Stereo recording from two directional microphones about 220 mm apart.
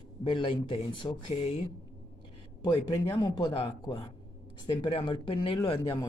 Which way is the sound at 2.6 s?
20° left (ahead or behind).